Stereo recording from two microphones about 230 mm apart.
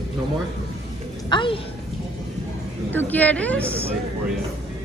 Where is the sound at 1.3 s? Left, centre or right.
Left.